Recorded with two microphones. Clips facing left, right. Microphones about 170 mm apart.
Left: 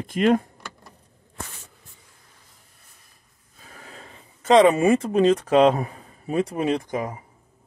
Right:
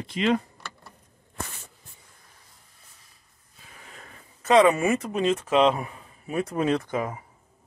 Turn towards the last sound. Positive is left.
turn(degrees=10)  # may be behind; listen again after turning